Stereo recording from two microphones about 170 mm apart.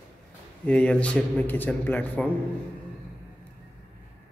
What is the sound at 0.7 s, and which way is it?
A man's voice, 5° left (ahead or behind).